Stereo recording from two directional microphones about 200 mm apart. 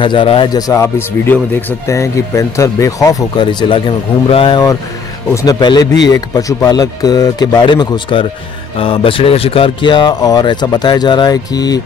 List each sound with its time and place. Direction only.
0.0 s speech: 25° left (ahead or behind)